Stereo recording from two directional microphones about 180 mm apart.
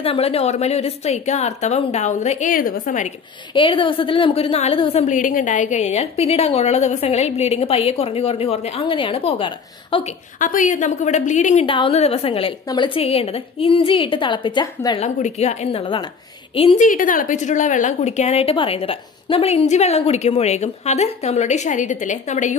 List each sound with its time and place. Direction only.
0.0 s a woman's voice: 30° left (ahead or behind)
3.5 s a woman's voice: 30° left (ahead or behind)
10.4 s a woman's voice: 45° left (ahead or behind)
11.6 s a woman's voice: 30° left (ahead or behind)
15.0 s a woman's voice: 35° left (ahead or behind)
16.8 s a woman's voice: 45° left (ahead or behind)